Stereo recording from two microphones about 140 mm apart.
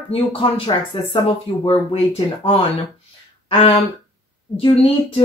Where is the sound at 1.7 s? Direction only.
45° left (ahead or behind).